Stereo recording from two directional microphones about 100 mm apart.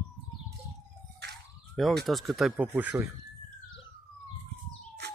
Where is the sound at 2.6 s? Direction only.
20° right (ahead or behind).